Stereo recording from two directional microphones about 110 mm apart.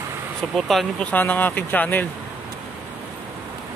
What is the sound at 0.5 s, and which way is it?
Speech, centre (ahead or behind).